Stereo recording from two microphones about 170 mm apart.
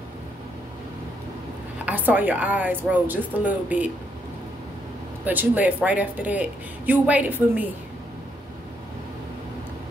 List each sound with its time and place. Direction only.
1.9 s a woman's voice: 10° right (ahead or behind)
5.2 s a woman's voice: 10° right (ahead or behind)